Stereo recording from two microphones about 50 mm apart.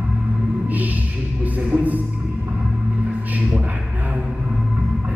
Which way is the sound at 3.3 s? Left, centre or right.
Right.